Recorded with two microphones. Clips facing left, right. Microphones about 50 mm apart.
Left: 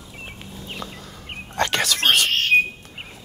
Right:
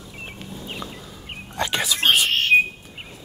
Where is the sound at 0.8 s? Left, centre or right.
Centre.